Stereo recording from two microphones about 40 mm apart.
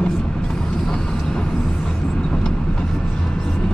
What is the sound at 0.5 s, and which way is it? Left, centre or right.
Vehicle, centre.